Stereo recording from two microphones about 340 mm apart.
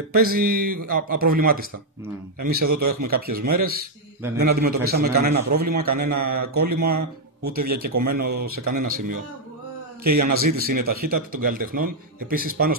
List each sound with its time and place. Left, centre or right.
0.1 s speech: right
10.1 s speech: right